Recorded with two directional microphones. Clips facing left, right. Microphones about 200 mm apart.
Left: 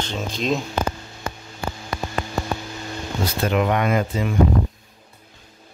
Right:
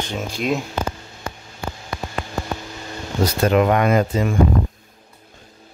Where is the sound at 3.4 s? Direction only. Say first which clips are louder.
Right 4 dB; 45° right (ahead or behind).